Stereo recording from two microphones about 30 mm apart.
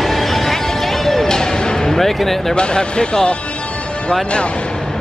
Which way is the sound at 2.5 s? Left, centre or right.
Left.